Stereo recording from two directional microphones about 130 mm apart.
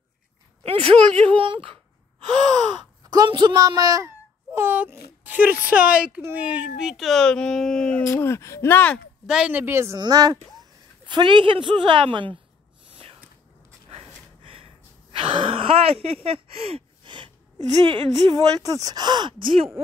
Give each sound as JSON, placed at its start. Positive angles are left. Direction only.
{"t": 0.7, "sound": "speech", "side_deg": -45}
{"t": 3.1, "sound": "a woman's voice", "side_deg": -35}
{"t": 4.5, "sound": "speech", "side_deg": -15}
{"t": 8.0, "sound": "speech", "side_deg": 20}
{"t": 9.2, "sound": "speech", "side_deg": -5}
{"t": 9.9, "sound": "speech", "side_deg": -30}
{"t": 12.9, "sound": "a sound", "side_deg": -45}
{"t": 15.1, "sound": "speech", "side_deg": -45}
{"t": 18.3, "sound": "speech", "side_deg": -30}